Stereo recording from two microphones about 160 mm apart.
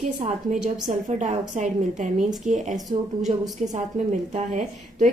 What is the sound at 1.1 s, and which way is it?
A woman's voice, 50° right (ahead or behind).